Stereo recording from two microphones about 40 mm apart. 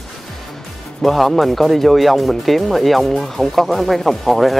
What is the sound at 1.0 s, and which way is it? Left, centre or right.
Speech, centre.